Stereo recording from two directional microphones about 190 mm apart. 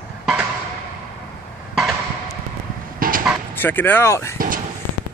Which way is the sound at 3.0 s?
45° right (ahead or behind).